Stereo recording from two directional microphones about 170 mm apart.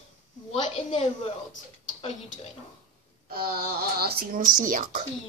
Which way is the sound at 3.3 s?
60° right (ahead or behind).